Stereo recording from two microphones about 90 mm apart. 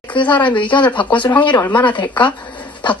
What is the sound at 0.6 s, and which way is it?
Speech, 60° left (ahead or behind).